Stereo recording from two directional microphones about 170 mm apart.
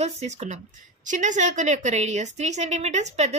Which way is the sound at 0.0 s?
40° right (ahead or behind).